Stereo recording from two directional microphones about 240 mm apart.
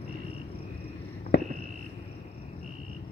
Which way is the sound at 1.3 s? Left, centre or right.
Left.